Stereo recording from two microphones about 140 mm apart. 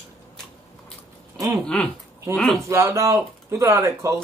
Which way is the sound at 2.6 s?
20° right (ahead or behind).